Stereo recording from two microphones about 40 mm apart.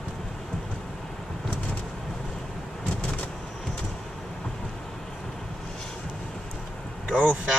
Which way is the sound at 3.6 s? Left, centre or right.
Left.